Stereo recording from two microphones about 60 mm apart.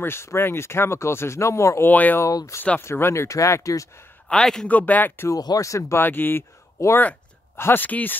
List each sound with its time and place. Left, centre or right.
0.0 s speech: left
1.9 s speech: left
2.2 s speech: left
2.8 s speech: left
4.3 s a man's voice: centre
4.6 s speech: left
5.3 s speech: left
5.9 s speech: left
6.8 s speech: left
7.5 s speech: left
7.8 s speech: left